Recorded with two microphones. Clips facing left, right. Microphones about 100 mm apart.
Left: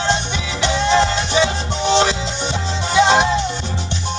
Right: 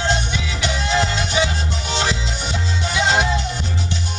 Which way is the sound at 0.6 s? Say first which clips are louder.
Left 6 dB; 30° left (ahead or behind).